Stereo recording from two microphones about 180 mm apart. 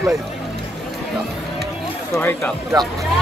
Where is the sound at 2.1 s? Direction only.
10° left (ahead or behind).